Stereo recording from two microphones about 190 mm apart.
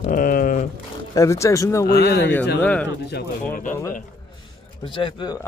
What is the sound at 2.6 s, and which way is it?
Speech, 5° left (ahead or behind).